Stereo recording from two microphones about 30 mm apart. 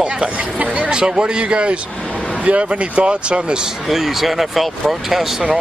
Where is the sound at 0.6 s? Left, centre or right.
Right.